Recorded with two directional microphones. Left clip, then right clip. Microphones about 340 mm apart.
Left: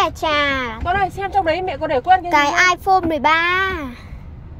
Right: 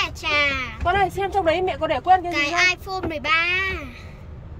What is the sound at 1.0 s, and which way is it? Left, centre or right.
Speech, right.